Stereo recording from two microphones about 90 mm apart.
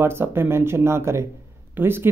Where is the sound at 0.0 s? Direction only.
25° right (ahead or behind).